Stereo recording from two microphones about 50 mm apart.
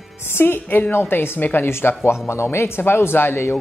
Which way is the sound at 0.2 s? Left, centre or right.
Left.